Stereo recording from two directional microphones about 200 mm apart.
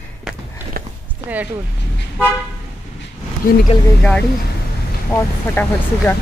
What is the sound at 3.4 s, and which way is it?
Speech, 45° left (ahead or behind).